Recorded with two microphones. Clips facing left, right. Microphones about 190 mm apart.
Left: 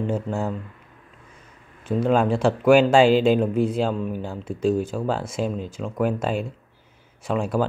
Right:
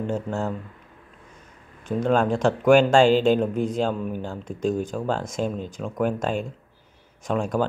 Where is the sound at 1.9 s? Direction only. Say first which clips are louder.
Left 1 dB; 5° left (ahead or behind).